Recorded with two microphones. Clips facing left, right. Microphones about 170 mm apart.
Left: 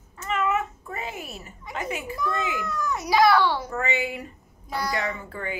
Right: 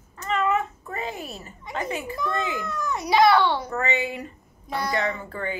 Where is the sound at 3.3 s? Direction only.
25° right (ahead or behind).